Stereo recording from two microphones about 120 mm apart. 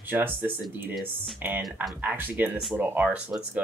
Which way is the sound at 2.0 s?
15° right (ahead or behind).